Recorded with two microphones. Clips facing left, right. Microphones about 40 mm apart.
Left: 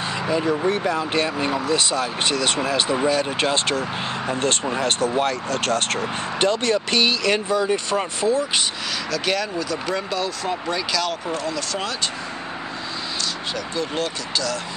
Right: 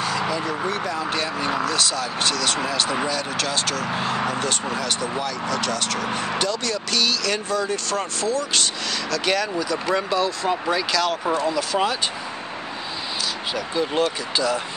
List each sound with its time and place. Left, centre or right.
0.0 s speech: left
9.1 s speech: centre
13.6 s speech: centre